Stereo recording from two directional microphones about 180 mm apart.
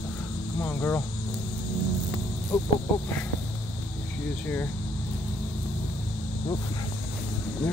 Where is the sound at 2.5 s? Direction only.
15° left (ahead or behind).